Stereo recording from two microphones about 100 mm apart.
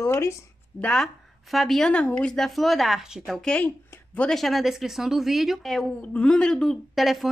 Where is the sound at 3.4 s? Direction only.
15° left (ahead or behind).